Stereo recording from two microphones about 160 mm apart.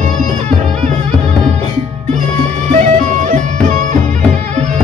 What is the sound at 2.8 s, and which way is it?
Music, 50° right (ahead or behind).